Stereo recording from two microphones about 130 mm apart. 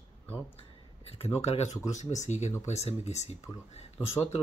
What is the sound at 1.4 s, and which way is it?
Speech, 55° left (ahead or behind).